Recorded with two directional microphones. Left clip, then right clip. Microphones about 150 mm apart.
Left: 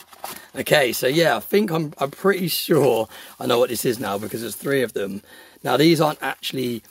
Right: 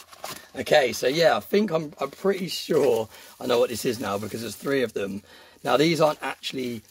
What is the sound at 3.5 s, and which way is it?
Speech, 35° left (ahead or behind).